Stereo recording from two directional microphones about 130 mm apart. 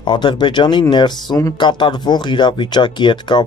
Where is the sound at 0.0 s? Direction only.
35° left (ahead or behind).